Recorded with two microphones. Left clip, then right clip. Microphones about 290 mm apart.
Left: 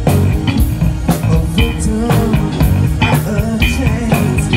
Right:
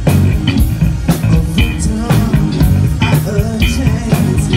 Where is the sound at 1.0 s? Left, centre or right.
Left.